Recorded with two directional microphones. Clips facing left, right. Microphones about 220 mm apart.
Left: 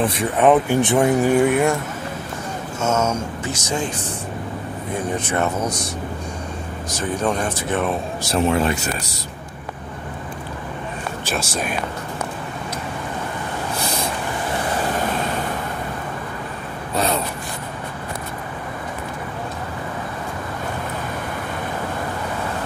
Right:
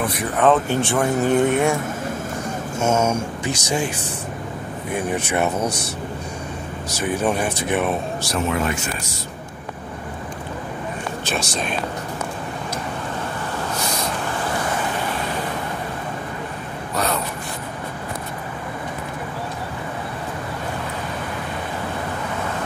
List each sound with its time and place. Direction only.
0.0 s speech: 25° left (ahead or behind)
1.3 s speech: 10° left (ahead or behind)
2.8 s speech: 10° right (ahead or behind)
4.9 s speech: 10° right (ahead or behind)
6.9 s speech: 5° right (ahead or behind)
8.3 s speech: 30° left (ahead or behind)
11.3 s speech: 5° left (ahead or behind)